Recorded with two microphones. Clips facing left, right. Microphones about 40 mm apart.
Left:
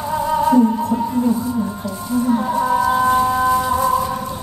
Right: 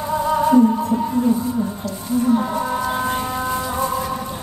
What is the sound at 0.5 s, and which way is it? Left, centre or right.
Music, centre.